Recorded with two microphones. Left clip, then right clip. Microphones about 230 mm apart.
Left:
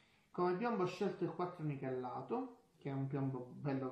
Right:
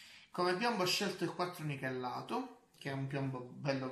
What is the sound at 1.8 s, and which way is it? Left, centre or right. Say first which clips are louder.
Speech: right 4 dB; right.